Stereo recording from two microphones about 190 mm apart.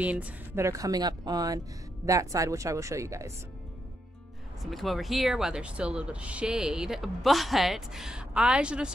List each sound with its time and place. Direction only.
0.0 s a woman's voice: 5° right (ahead or behind)
4.6 s speech: centre (ahead or behind)